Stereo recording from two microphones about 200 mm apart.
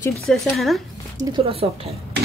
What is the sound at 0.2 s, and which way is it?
Speech, centre (ahead or behind).